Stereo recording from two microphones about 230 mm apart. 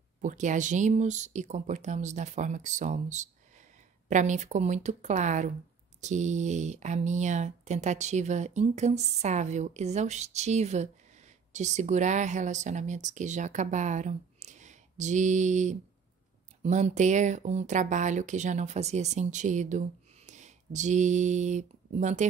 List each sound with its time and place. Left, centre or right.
0.2 s speech: right